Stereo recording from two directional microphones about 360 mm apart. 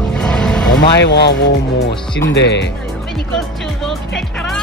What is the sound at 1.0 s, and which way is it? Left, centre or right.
Speech, left.